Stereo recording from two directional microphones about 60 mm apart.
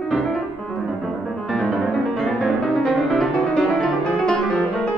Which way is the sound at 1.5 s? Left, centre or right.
Centre.